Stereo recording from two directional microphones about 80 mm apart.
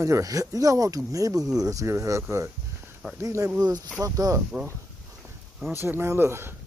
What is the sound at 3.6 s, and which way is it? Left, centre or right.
Speech, right.